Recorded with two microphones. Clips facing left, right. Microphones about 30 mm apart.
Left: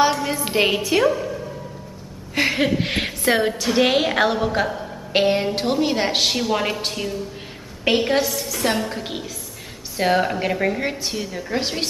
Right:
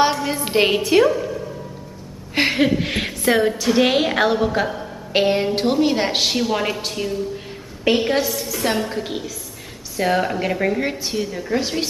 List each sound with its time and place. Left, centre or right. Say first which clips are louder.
0.1 s music: even; centre
0.5 s a woman's voice: right 3 dB; centre
2.5 s a woman's voice: right 2 dB; centre
10.2 s a woman's voice: right 1 dB; centre